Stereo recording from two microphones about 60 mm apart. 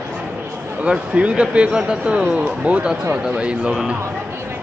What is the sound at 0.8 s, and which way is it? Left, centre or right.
A man's voice, centre.